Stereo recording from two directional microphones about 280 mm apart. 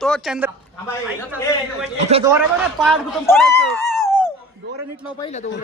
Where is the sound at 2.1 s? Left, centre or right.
Right.